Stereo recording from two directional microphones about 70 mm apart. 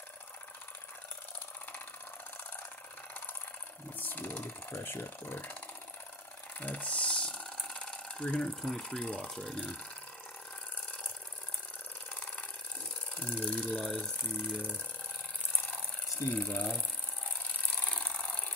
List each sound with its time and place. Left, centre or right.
4.0 s speech: left
6.6 s speech: centre
13.1 s speech: left
16.3 s speech: left
17.8 s a sound: centre